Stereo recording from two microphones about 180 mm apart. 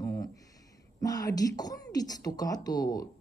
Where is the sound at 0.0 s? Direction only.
20° left (ahead or behind).